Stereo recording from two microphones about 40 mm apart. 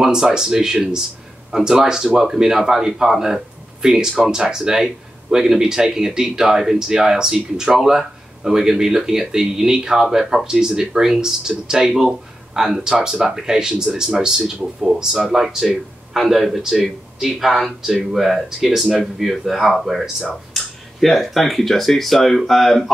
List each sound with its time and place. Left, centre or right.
0.0 s speech: centre
15.1 s speech: centre